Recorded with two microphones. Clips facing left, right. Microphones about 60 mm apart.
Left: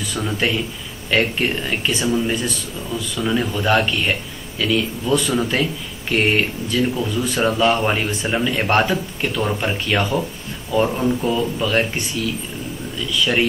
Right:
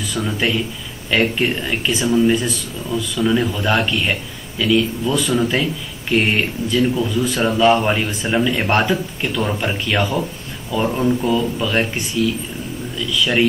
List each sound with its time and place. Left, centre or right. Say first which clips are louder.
0.1 s speech: right 1 dB; centre
13.2 s speech: right 2 dB; centre